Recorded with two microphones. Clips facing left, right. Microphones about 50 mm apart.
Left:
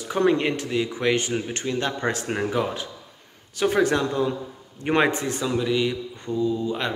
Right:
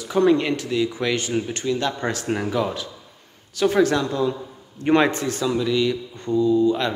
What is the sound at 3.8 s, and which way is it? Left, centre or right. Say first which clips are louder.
Speech: right 1 dB; left.